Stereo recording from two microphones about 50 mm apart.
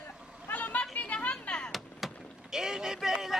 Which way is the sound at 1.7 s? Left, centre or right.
Centre.